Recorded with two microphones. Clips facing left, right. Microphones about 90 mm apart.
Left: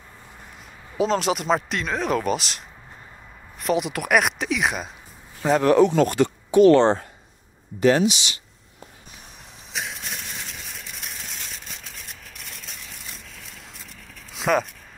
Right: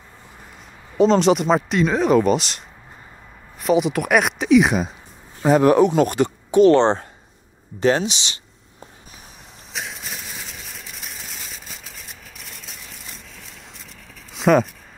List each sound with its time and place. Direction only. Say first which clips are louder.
0.9 s speech: right 7 dB; centre (ahead or behind)
3.6 s speech: right 5 dB; centre (ahead or behind)
5.4 s speech: right 3 dB; 15° right (ahead or behind)
9.7 s a sound: even; centre (ahead or behind)